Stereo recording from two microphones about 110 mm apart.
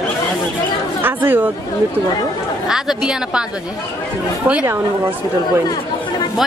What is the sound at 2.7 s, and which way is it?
Speech, 5° right (ahead or behind).